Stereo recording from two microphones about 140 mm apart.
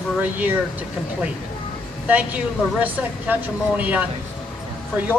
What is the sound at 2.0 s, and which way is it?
A woman's voice, 10° right (ahead or behind).